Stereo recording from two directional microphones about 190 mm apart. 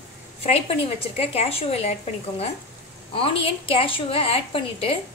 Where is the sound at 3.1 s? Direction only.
30° left (ahead or behind).